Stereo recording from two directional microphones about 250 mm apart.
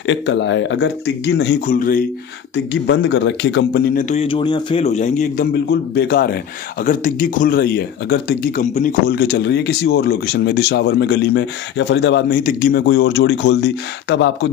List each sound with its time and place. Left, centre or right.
0.0 s speech: left
2.5 s speech: left
5.5 s speech: left